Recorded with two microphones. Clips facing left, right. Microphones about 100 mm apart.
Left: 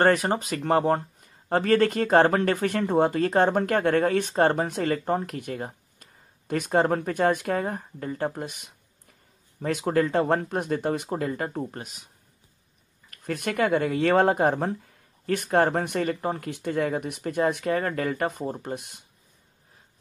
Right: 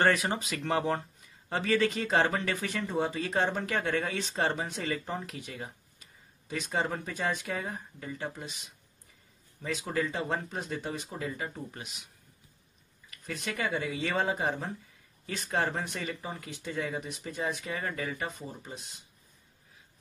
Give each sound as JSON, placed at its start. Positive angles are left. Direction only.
{"t": 0.0, "sound": "speech", "side_deg": 45}
{"t": 13.1, "sound": "speech", "side_deg": 55}